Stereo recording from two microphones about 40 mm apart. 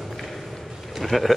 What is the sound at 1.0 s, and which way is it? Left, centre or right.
Speech, centre.